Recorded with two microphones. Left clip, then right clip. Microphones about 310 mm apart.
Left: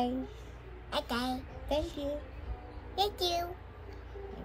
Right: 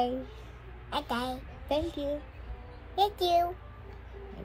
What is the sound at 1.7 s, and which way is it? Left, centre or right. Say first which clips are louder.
Speech: right 3 dB; centre.